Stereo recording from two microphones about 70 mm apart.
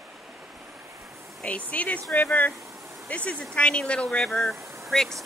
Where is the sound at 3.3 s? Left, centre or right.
Centre.